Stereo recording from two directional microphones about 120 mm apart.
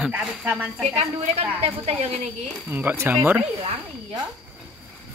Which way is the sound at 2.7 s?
15° right (ahead or behind).